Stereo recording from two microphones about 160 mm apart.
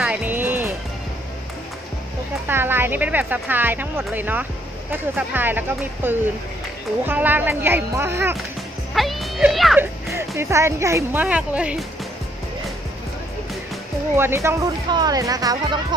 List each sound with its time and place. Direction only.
0.0 s music: 10° right (ahead or behind)
2.4 s speech: 15° right (ahead or behind)
8.9 s music: centre (ahead or behind)
9.8 s speech: 15° right (ahead or behind)
14.1 s speech: 15° right (ahead or behind)